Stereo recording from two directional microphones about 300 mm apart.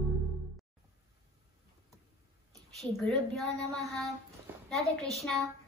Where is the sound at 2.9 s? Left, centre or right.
Centre.